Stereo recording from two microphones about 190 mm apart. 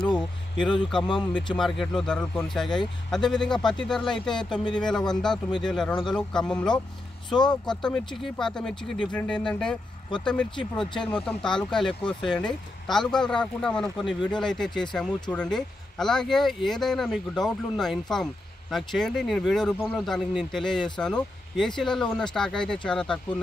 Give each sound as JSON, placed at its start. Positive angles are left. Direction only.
{"t": 0.9, "sound": "speech", "side_deg": 5}
{"t": 7.2, "sound": "speech", "side_deg": 25}
{"t": 7.6, "sound": "speech", "side_deg": 5}